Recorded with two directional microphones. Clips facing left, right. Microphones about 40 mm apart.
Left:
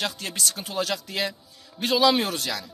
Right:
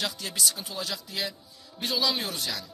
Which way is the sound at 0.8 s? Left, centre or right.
Left.